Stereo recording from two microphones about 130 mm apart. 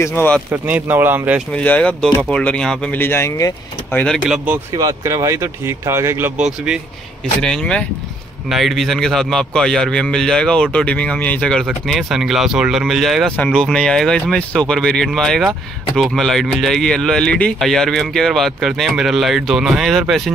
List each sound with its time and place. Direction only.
0.0 s speech: 15° left (ahead or behind)
0.5 s speech: 15° right (ahead or behind)
1.5 s speech: 10° left (ahead or behind)
3.9 s speech: 10° left (ahead or behind)
4.7 s speech: 25° right (ahead or behind)
6.3 s speech: 5° right (ahead or behind)
7.4 s speech: 5° left (ahead or behind)